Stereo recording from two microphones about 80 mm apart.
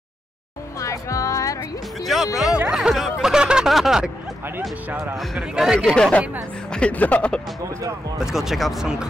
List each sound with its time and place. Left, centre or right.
0.7 s music: left
2.3 s a sound: centre
5.1 s a man's voice: centre
5.9 s speech: centre
8.2 s a man's voice: centre